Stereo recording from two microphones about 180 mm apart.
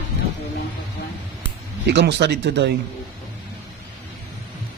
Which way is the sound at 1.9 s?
75° right (ahead or behind).